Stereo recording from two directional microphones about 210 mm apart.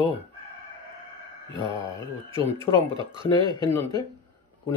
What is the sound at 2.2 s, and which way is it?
Speech, 25° right (ahead or behind).